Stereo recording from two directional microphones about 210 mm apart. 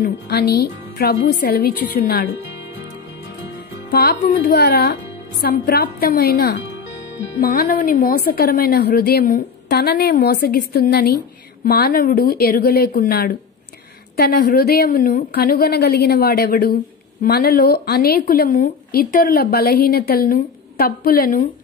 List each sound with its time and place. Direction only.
0.0 s a woman's voice: 50° left (ahead or behind)
3.9 s a woman's voice: 50° left (ahead or behind)